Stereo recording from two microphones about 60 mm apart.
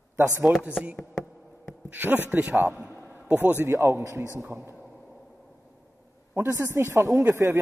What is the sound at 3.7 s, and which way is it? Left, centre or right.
A man's voice, right.